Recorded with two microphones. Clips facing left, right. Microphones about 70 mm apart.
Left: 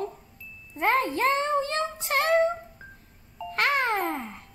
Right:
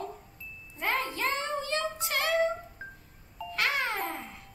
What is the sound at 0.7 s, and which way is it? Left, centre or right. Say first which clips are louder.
A child's voice: left 7 dB; left.